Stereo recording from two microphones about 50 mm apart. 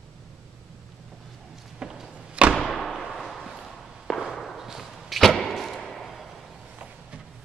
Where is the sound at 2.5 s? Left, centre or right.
Centre.